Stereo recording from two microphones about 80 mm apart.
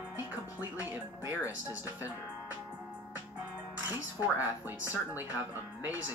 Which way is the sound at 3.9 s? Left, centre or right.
Right.